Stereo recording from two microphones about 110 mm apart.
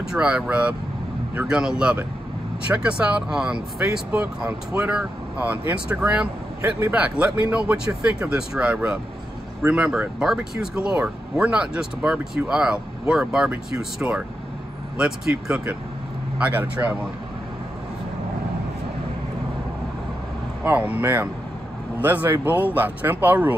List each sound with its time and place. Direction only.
0.1 s speech: 5° right (ahead or behind)
20.6 s speech: 15° right (ahead or behind)